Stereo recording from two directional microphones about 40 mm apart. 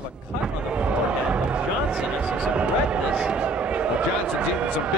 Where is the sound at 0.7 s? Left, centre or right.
Right.